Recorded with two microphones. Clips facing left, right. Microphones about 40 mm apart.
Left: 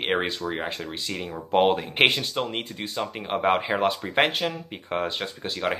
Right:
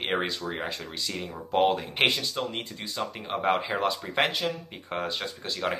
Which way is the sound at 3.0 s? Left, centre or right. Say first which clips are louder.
Left 3 dB; centre.